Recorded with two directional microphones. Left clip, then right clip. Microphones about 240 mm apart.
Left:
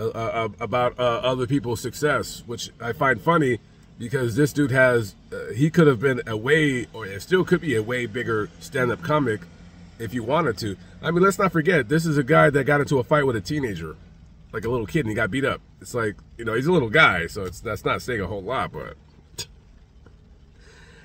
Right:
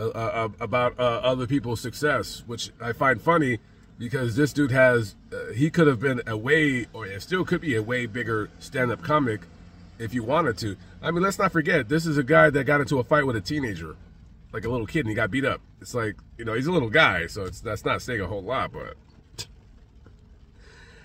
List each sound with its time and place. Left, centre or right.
0.0 s speech: centre